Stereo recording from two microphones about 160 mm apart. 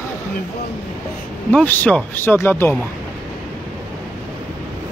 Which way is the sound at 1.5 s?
10° left (ahead or behind).